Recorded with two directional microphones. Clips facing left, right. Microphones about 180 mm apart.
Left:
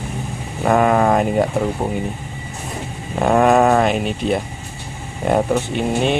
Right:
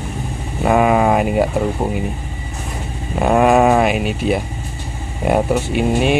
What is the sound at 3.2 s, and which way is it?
Speech, 5° right (ahead or behind).